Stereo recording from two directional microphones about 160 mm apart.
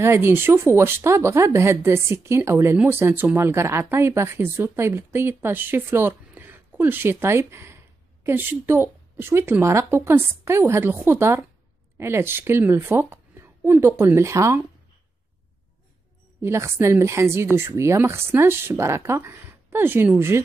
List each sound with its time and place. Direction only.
0.0 s speech: 15° right (ahead or behind)
16.3 s speech: 15° right (ahead or behind)